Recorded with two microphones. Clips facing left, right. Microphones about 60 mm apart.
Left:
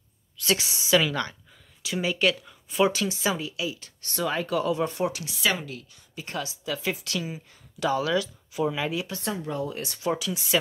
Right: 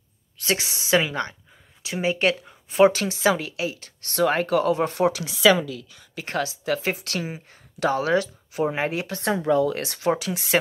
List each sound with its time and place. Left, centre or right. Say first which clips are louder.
0.4 s speech: right 1 dB; right
1.0 s speech: right 1 dB; right
9.5 s speech: right 10 dB; right